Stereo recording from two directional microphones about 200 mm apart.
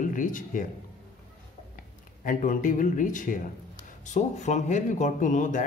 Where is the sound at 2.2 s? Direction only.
40° left (ahead or behind).